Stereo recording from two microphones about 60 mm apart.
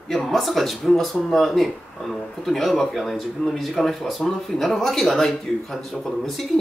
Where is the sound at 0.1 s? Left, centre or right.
Centre.